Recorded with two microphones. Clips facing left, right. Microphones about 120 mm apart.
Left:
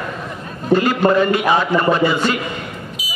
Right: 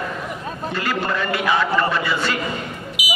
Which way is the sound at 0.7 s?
20° left (ahead or behind).